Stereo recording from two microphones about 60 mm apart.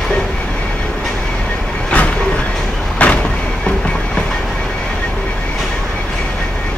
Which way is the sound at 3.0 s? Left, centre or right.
Left.